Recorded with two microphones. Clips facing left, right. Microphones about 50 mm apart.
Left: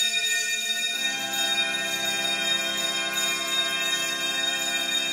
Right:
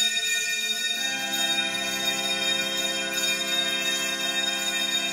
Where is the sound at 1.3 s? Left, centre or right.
Left.